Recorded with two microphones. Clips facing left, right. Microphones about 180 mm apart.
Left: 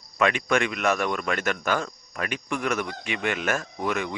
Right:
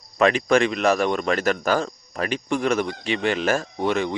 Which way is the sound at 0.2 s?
35° right (ahead or behind).